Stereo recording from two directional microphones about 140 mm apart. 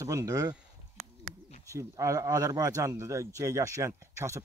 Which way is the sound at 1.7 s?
20° right (ahead or behind).